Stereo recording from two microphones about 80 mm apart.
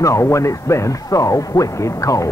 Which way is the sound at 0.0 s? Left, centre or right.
Left.